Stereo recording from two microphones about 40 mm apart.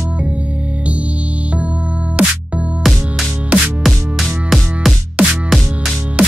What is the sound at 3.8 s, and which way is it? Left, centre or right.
Music, centre.